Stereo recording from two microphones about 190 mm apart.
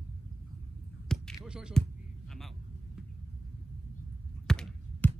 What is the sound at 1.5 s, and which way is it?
Music, 5° right (ahead or behind).